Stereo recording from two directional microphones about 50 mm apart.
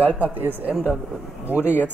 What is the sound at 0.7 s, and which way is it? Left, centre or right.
Speech, right.